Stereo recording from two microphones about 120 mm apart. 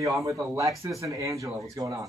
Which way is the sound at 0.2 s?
25° right (ahead or behind).